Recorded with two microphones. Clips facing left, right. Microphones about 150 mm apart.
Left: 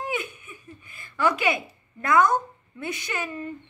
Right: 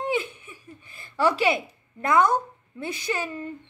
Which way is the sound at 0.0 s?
25° right (ahead or behind).